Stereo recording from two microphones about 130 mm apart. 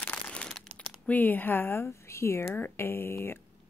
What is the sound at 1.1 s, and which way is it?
Speech, 15° left (ahead or behind).